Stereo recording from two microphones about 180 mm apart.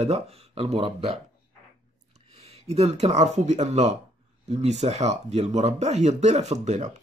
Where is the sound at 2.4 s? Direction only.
35° right (ahead or behind).